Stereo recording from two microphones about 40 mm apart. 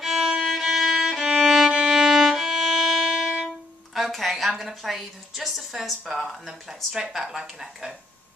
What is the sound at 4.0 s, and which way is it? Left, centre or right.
A woman's voice, centre.